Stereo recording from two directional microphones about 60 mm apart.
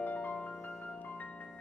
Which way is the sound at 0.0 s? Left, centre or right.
Left.